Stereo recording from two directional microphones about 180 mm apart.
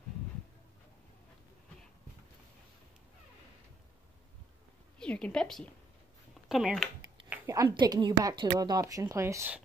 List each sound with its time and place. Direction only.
4.9 s a woman's voice: 5° left (ahead or behind)
7.2 s a woman's voice: 15° right (ahead or behind)